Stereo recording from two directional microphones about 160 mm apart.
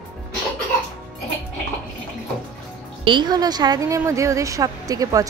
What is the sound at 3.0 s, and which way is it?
Speech, 30° right (ahead or behind).